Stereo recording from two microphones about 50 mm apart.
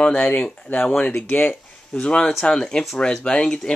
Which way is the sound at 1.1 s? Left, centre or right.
Left.